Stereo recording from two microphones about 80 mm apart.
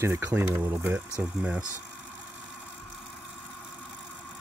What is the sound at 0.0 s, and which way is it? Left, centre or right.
Speech, right.